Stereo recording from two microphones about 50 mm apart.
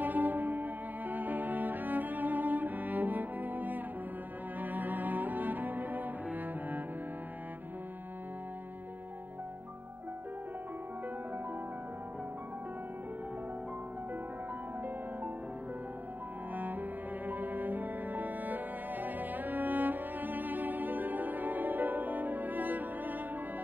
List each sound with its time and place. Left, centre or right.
0.0 s cello: right
16.5 s cello: right
17.3 s music: right